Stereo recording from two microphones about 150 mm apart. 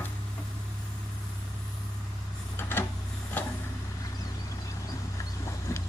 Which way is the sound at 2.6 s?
15° left (ahead or behind).